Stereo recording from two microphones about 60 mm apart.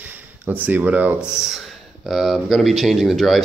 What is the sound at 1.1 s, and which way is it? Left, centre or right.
Speech, centre.